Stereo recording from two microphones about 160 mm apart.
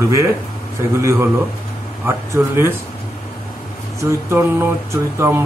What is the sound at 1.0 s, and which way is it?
Speech, 15° right (ahead or behind).